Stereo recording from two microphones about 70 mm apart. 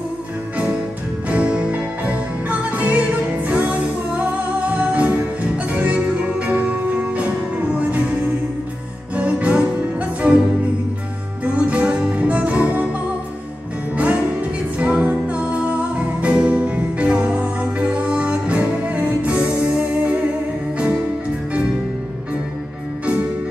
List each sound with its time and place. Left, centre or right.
1.3 s music: centre
9.1 s music: centre
11.4 s music: centre
14.8 s music: centre